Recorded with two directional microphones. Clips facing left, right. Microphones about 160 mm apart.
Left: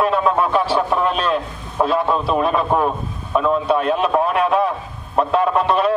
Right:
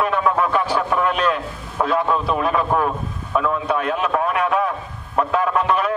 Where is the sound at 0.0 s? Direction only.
25° left (ahead or behind).